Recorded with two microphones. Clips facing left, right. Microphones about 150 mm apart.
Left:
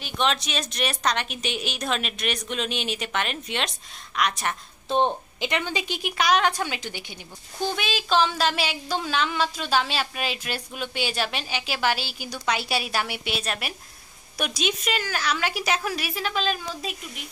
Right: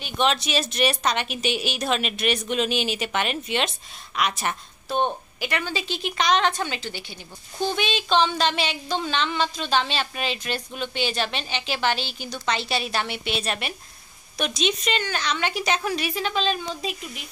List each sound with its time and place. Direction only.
0.0 s a woman's voice: centre (ahead or behind)
4.8 s a woman's voice: 25° left (ahead or behind)
7.5 s a woman's voice: 5° left (ahead or behind)